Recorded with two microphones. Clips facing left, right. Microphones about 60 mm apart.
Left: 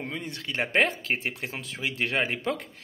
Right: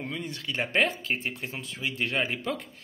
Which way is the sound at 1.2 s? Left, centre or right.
Left.